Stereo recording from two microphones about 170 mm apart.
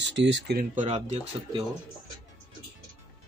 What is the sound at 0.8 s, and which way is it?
Speech, 40° right (ahead or behind).